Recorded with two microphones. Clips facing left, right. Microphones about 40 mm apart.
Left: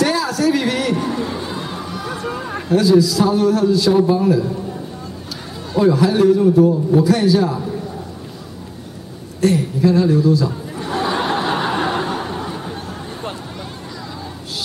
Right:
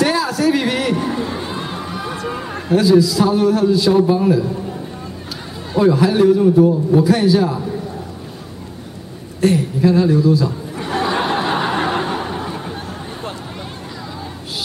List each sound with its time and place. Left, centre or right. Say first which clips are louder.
0.0 s a sound: right 1 dB; centre
2.7 s a man's voice: right 1 dB; centre
5.7 s a man's voice: right 1 dB; centre
9.4 s a man's voice: right 1 dB; centre
10.8 s a sound: right 1 dB; right
11.2 s snicker: right 1 dB; centre